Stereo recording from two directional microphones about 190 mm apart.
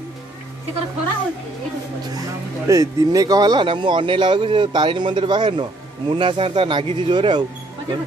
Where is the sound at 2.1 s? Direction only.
15° right (ahead or behind).